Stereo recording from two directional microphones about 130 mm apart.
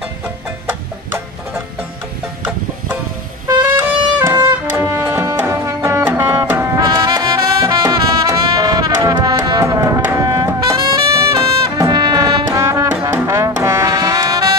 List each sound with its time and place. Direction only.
0.7 s music: 20° right (ahead or behind)
3.4 s music: 20° right (ahead or behind)
10.1 s brass instrument: 25° right (ahead or behind)